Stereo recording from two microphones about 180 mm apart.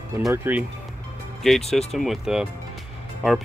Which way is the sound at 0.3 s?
10° right (ahead or behind).